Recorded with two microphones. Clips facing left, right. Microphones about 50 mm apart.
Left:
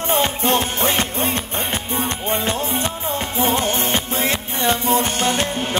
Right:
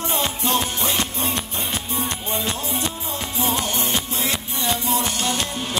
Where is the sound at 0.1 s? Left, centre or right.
Left.